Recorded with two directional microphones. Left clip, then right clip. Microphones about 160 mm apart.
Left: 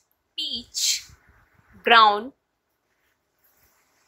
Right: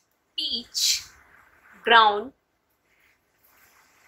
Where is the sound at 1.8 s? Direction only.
45° left (ahead or behind).